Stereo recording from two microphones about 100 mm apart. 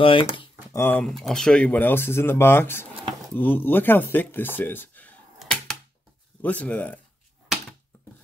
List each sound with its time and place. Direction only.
0.0 s speech: 65° left (ahead or behind)
0.7 s speech: 20° left (ahead or behind)
1.0 s speech: 5° left (ahead or behind); by 5.1 s 20° left (ahead or behind)
5.4 s typewriter: 5° left (ahead or behind)
6.4 s speech: 15° left (ahead or behind)